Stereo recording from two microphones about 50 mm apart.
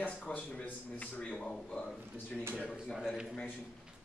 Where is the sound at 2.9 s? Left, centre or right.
Centre.